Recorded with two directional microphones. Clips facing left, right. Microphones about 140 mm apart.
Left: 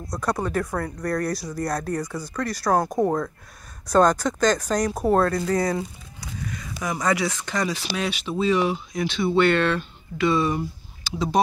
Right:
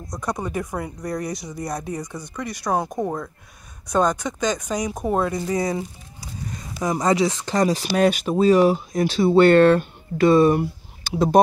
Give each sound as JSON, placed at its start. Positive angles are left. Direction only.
{"t": 0.1, "sound": "speech", "side_deg": -15}
{"t": 2.9, "sound": "speech", "side_deg": 10}
{"t": 3.9, "sound": "speech", "side_deg": -10}
{"t": 6.5, "sound": "speech", "side_deg": -35}
{"t": 7.5, "sound": "speech", "side_deg": -40}